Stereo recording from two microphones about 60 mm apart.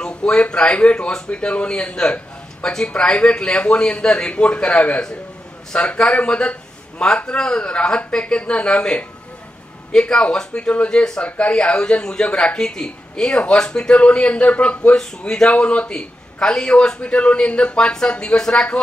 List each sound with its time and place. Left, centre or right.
0.0 s a man's voice: centre
15.0 s a man's voice: centre
15.5 s a man's voice: left